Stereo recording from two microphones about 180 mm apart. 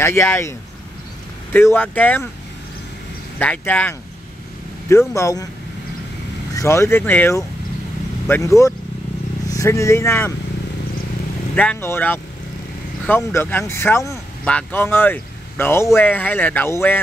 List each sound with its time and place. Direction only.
0.0 s speech: 15° left (ahead or behind)
3.3 s speech: 10° left (ahead or behind)
6.5 s speech: 15° left (ahead or behind)
11.5 s speech: 5° left (ahead or behind)